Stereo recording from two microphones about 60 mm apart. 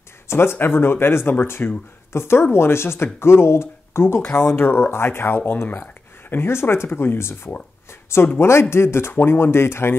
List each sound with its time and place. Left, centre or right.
0.3 s speech: left
4.2 s speech: left
4.5 s speech: left